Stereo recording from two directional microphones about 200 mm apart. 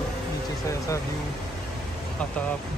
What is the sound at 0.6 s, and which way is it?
Speech, 15° left (ahead or behind).